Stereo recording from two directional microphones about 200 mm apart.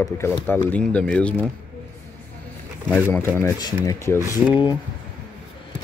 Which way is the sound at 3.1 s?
10° left (ahead or behind).